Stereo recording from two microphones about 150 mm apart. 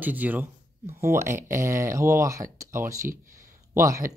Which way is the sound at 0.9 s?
15° right (ahead or behind).